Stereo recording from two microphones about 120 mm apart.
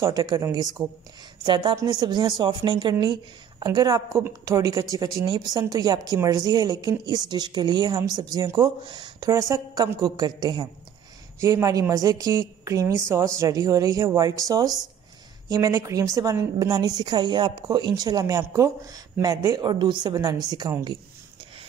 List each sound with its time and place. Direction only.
0.0 s a woman's voice: 30° right (ahead or behind)
1.4 s a woman's voice: 40° right (ahead or behind)
9.3 s a woman's voice: 30° right (ahead or behind)